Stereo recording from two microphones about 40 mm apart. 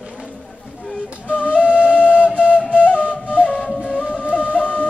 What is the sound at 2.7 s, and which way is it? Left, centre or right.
Flute, left.